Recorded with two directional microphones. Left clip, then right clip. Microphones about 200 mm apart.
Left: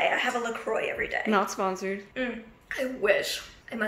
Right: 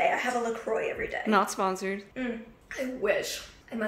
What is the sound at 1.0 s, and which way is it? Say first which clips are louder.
Speech: right 1 dB; centre (ahead or behind).